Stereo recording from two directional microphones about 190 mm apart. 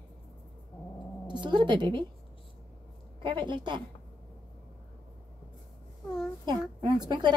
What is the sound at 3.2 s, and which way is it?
Speech, 25° right (ahead or behind).